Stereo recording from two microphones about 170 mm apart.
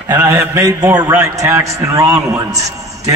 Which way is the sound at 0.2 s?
15° right (ahead or behind).